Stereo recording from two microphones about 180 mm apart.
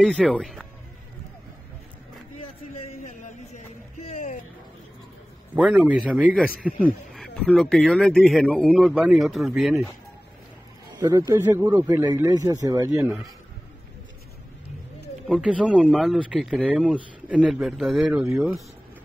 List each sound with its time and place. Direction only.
0.0 s speech: centre (ahead or behind)
2.7 s music: 40° left (ahead or behind)
5.6 s speech: 5° right (ahead or behind)
11.0 s a man's voice: 20° right (ahead or behind)
15.2 s speech: 5° right (ahead or behind)